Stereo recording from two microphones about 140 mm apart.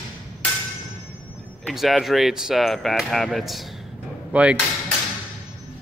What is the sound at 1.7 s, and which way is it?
Speech, centre (ahead or behind).